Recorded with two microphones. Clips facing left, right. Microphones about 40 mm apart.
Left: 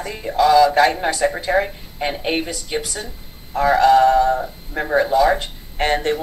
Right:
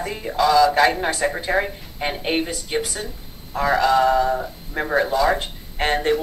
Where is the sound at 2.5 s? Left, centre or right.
Right.